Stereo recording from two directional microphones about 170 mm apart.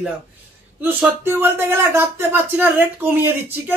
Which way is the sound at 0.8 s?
10° right (ahead or behind).